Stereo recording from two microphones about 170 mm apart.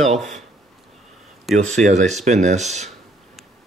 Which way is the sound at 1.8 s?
45° right (ahead or behind).